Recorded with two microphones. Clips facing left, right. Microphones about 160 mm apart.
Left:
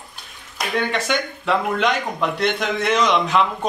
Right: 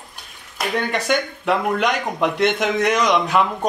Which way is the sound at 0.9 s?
10° right (ahead or behind).